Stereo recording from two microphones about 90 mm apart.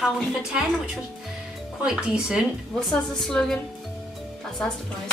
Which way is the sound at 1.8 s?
5° right (ahead or behind).